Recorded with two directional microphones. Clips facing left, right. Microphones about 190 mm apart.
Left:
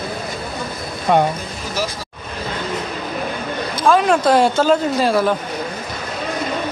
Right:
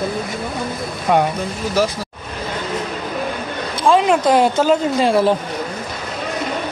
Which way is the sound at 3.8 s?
20° right (ahead or behind).